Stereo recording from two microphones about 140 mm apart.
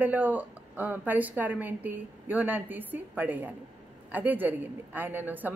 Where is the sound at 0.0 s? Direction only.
10° right (ahead or behind).